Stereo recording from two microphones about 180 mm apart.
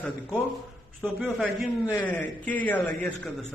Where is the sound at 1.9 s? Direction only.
10° left (ahead or behind).